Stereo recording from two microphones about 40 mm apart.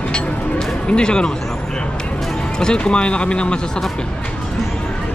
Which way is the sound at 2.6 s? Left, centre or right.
Left.